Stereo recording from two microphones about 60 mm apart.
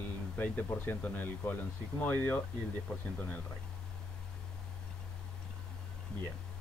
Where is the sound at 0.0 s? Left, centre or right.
Left.